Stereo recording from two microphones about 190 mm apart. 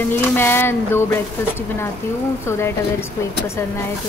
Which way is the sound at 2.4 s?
15° left (ahead or behind).